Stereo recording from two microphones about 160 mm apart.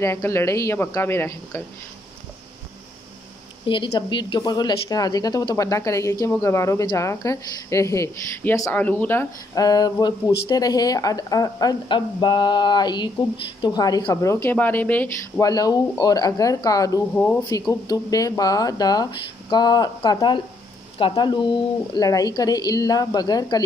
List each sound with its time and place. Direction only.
0.0 s a woman's voice: 15° left (ahead or behind)
3.6 s a woman's voice: 30° left (ahead or behind); by 15.4 s 10° left (ahead or behind)
15.4 s a woman's voice: 25° left (ahead or behind)
17.1 s a woman's voice: 10° left (ahead or behind)
17.5 s a woman's voice: 20° left (ahead or behind)